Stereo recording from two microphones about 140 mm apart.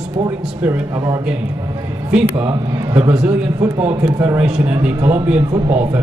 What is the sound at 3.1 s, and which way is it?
Speech, 10° right (ahead or behind).